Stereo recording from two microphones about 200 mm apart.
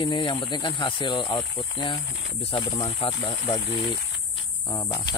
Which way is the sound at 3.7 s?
60° left (ahead or behind).